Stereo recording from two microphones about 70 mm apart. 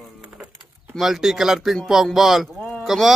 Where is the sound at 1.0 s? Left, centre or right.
Centre.